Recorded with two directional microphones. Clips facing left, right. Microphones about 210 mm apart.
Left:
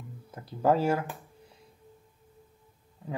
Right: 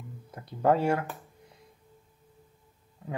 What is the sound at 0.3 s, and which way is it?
Speech, 5° left (ahead or behind).